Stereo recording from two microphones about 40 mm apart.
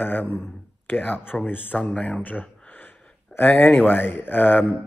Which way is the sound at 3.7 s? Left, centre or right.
Left.